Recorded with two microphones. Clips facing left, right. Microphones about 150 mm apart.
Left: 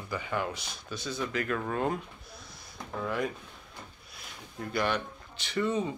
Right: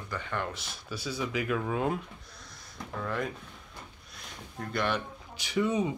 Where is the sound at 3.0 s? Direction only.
5° left (ahead or behind).